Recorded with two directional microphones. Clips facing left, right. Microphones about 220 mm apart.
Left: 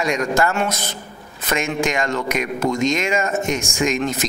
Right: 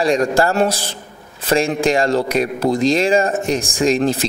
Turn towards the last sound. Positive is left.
turn(degrees=-35)  # may be behind; listen again after turning